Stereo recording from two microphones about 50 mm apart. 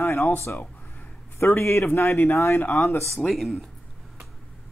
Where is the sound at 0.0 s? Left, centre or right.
Left.